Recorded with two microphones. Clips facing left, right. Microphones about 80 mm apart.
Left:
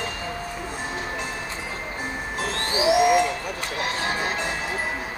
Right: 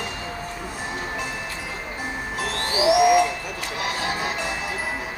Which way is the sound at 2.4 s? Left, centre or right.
Left.